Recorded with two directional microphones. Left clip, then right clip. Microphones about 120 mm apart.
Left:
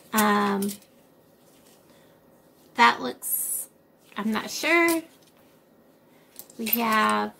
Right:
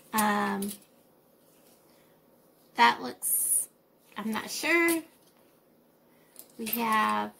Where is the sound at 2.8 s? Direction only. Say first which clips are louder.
Left 4 dB; 30° right (ahead or behind).